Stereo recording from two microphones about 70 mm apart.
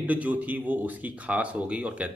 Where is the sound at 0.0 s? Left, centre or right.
Right.